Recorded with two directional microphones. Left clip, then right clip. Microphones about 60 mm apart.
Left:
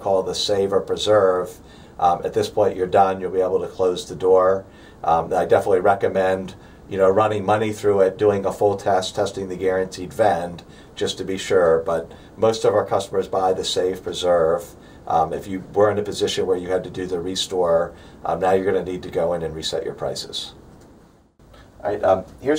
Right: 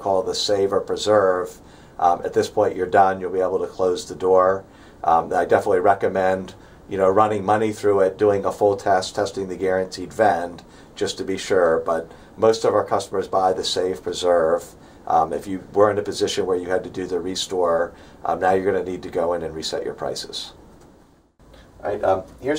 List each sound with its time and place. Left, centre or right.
0.0 s speech: right
16.3 s speech: right
16.6 s speech: right
21.8 s speech: centre